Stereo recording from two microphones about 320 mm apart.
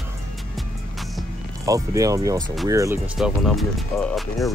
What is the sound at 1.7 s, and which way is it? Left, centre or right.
Speech, centre.